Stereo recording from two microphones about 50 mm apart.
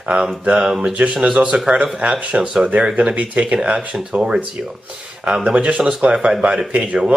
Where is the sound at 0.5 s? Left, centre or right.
Centre.